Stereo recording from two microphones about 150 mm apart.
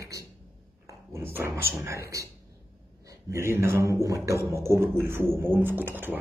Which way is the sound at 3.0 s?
20° right (ahead or behind).